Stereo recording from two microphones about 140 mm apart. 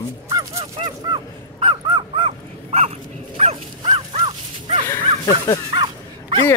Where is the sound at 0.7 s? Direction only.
35° right (ahead or behind).